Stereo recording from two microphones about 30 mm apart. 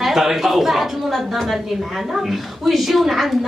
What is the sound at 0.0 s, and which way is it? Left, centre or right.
A woman's voice, centre.